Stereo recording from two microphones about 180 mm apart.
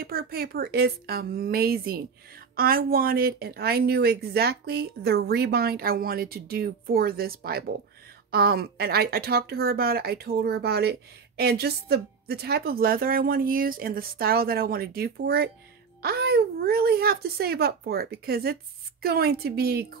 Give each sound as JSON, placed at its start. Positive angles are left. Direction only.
{"t": 0.0, "sound": "a woman's voice", "side_deg": -55}